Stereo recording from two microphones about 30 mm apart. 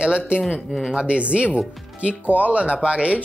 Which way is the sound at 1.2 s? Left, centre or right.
Right.